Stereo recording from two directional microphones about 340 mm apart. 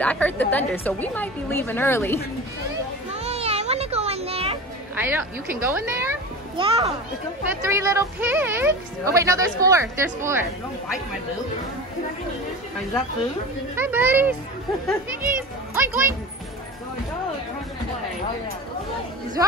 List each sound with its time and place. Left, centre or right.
0.0 s a woman's voice: centre
3.2 s music: centre
4.9 s a child's voice: centre
13.7 s a woman's voice: centre